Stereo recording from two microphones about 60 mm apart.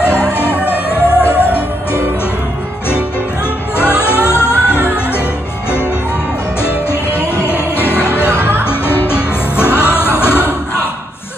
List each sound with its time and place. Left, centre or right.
0.0 s music: left
3.7 s music: left
6.6 s music: left